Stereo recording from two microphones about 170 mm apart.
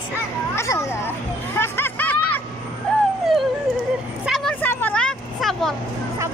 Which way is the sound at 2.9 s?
5° left (ahead or behind).